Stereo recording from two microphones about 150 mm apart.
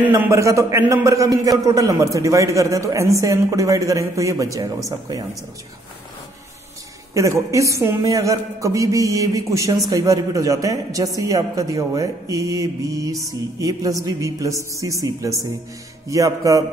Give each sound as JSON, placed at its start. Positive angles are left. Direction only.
{"t": 0.2, "sound": "a man's voice", "side_deg": -20}
{"t": 7.2, "sound": "a man's voice", "side_deg": -20}